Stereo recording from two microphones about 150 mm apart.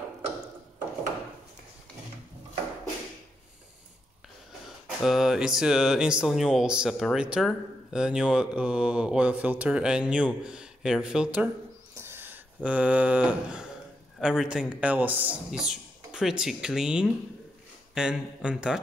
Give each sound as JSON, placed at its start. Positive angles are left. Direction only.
{"t": 5.0, "sound": "speech", "side_deg": -5}
{"t": 11.9, "sound": "owl", "side_deg": -15}
{"t": 12.6, "sound": "mantra", "side_deg": -10}
{"t": 14.2, "sound": "speech", "side_deg": -5}